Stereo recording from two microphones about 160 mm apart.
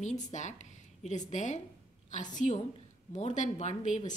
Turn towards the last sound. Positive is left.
turn(degrees=50)  # may be behind; listen again after turning